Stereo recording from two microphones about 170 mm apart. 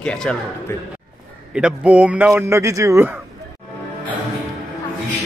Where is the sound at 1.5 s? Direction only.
5° right (ahead or behind).